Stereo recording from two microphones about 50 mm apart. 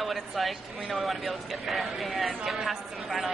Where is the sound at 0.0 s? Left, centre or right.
Centre.